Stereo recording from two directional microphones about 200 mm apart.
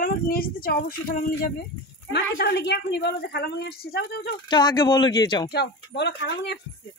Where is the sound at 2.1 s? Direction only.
55° left (ahead or behind).